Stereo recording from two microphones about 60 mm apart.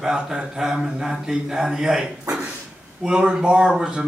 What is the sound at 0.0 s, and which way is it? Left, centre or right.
Speech, centre.